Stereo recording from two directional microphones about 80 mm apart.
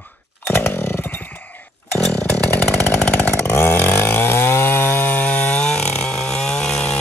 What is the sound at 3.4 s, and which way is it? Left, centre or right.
Chainsaw, left.